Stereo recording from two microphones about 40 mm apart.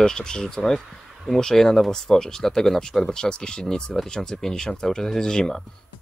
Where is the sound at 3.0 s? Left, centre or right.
Left.